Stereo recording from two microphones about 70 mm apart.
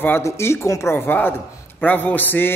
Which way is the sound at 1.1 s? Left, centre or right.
Left.